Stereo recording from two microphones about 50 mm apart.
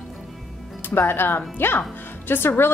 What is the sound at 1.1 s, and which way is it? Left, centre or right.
A woman's voice, left.